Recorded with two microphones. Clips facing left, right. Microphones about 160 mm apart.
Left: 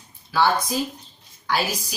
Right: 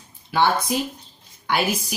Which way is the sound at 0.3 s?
20° right (ahead or behind).